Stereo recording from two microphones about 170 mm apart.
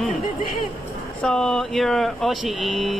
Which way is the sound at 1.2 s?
5° left (ahead or behind).